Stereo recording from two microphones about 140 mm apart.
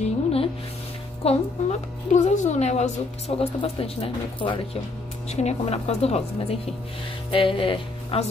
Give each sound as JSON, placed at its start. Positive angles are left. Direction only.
{"t": 0.0, "sound": "music", "side_deg": 45}
{"t": 1.2, "sound": "a woman's voice", "side_deg": 45}
{"t": 2.1, "sound": "a woman's voice", "side_deg": 55}
{"t": 5.3, "sound": "a woman's voice", "side_deg": 50}